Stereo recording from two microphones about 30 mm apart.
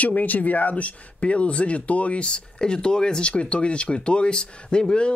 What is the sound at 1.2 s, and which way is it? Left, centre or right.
Speech, left.